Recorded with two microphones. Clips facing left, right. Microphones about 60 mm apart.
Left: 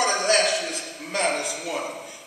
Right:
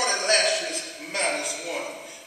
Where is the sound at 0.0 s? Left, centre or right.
Left.